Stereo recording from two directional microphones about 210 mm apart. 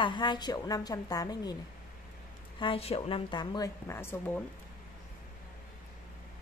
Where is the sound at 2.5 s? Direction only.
25° left (ahead or behind).